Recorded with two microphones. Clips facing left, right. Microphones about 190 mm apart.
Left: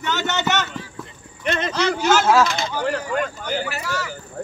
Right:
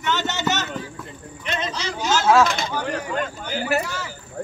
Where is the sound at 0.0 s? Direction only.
50° left (ahead or behind).